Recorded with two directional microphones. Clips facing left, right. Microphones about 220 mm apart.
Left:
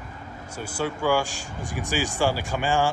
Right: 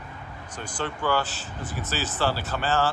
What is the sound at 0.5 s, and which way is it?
Speech, 10° left (ahead or behind).